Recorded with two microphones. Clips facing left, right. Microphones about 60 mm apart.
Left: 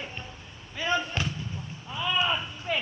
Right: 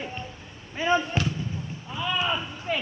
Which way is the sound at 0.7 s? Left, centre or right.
Right.